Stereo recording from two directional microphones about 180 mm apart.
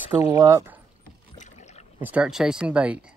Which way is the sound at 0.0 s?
35° left (ahead or behind).